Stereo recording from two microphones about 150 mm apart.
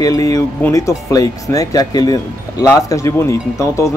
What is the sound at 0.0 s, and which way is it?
Speech, 20° left (ahead or behind).